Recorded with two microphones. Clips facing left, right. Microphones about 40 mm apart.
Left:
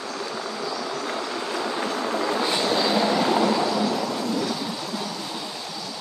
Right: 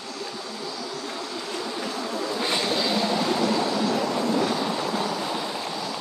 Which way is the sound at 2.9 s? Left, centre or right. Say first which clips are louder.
Left 3 dB; left.